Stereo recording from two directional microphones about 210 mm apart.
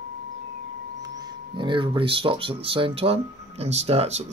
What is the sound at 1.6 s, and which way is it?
Speech, 25° right (ahead or behind).